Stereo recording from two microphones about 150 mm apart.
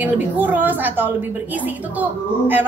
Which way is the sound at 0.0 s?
10° right (ahead or behind).